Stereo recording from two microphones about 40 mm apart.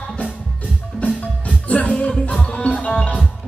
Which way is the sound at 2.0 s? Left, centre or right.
Left.